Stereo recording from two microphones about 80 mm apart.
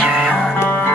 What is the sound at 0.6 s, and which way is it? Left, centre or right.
Music, left.